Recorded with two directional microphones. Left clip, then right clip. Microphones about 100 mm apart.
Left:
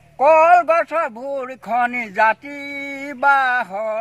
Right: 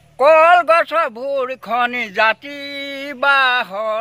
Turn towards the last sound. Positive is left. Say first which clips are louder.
# right 3 dB
turn(degrees=-30)  # may be behind; listen again after turning